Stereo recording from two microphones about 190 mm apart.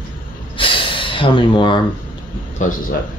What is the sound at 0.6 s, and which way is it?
Snort, 25° left (ahead or behind).